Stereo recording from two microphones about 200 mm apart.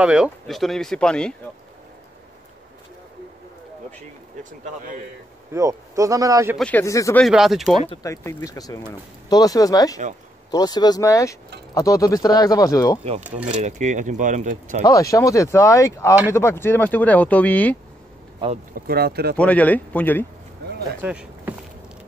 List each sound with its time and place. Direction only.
0.0 s speech: 5° right (ahead or behind)
4.0 s speech: 40° right (ahead or behind)
5.5 s a man's voice: 15° right (ahead or behind)
6.5 s speech: 5° left (ahead or behind)
7.2 s speech: centre (ahead or behind)
8.0 s speech: 15° left (ahead or behind)
13.6 s speech: 35° right (ahead or behind)
14.9 s speech: 15° left (ahead or behind)
18.7 s speech: 50° right (ahead or behind)
19.3 s speech: 5° left (ahead or behind)
20.6 s a sound: 55° right (ahead or behind)
21.0 s a sound: 5° right (ahead or behind)